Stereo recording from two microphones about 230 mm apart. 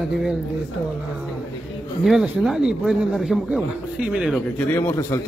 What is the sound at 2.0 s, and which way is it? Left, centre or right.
Speech, centre.